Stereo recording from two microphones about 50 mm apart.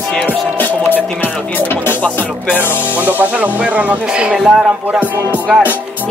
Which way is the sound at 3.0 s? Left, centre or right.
Right.